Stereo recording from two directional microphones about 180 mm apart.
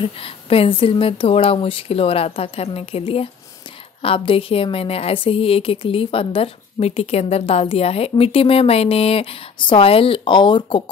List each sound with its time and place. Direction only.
0.0 s a woman's voice: 30° left (ahead or behind)